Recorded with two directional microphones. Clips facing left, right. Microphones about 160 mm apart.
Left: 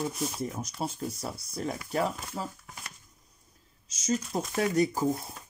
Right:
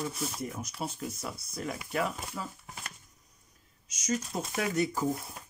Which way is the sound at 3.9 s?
30° left (ahead or behind).